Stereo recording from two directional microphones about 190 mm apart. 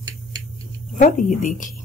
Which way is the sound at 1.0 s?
40° left (ahead or behind).